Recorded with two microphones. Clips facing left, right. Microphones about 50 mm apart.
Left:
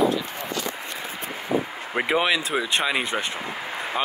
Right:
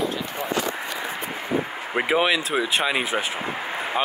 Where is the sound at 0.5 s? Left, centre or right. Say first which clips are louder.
Right 5 dB; centre.